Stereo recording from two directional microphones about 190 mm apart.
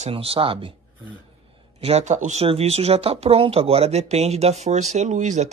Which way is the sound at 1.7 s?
35° right (ahead or behind).